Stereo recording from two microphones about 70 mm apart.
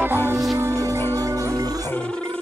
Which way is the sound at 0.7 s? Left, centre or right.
Right.